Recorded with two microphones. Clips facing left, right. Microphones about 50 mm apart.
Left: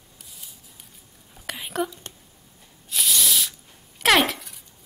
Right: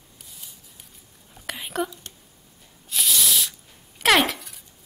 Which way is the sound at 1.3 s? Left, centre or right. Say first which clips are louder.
Even; centre.